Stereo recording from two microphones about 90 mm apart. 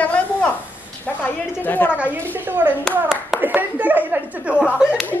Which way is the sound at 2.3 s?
25° right (ahead or behind).